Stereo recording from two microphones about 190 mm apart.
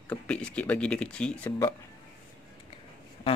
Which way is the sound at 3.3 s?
30° left (ahead or behind).